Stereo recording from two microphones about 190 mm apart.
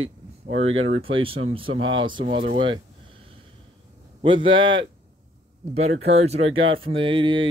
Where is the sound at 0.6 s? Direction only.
90° right.